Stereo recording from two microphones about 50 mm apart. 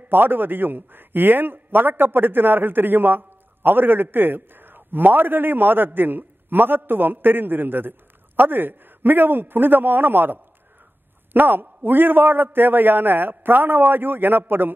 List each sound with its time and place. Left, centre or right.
0.1 s a man's voice: right